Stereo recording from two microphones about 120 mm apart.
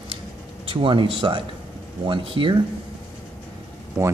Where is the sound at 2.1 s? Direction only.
45° right (ahead or behind).